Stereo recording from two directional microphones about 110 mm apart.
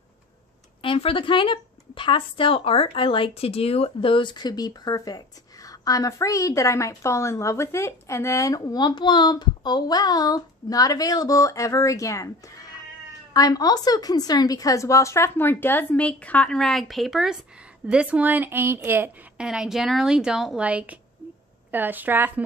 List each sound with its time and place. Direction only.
0.8 s a woman's voice: 55° left (ahead or behind); by 19.4 s 20° right (ahead or behind)
19.4 s a woman's voice: 5° right (ahead or behind)